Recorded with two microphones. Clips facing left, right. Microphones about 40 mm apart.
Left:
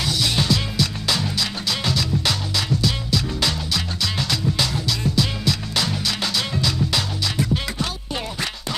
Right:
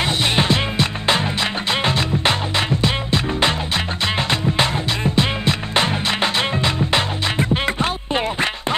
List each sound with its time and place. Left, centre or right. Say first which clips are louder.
0.0 s music: right 4 dB; right